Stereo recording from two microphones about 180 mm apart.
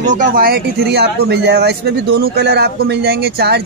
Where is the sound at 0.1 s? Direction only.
50° right (ahead or behind).